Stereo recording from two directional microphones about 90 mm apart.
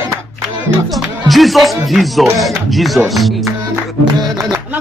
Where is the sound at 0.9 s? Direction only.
Centre (ahead or behind).